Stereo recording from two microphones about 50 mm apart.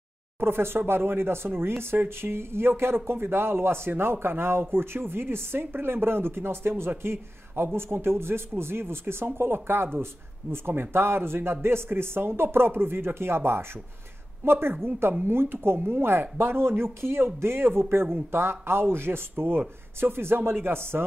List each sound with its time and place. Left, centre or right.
0.4 s speech: right